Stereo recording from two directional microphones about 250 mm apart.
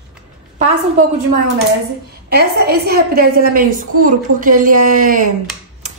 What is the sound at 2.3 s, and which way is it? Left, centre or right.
A woman's voice, right.